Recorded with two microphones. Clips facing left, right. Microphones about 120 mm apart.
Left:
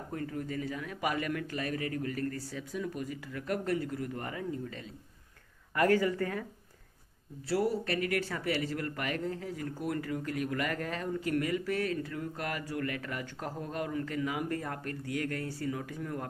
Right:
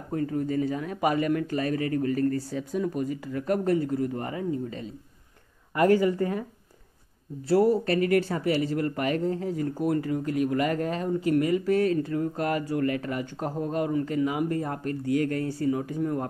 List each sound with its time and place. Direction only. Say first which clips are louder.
0.1 s speech: right 10 dB; 30° right (ahead or behind)
7.4 s speech: right 9 dB; 35° right (ahead or behind)